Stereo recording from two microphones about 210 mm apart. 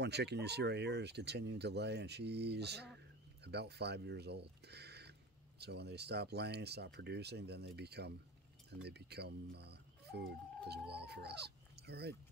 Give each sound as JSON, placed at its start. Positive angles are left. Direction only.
{"t": 0.0, "sound": "speech", "side_deg": -55}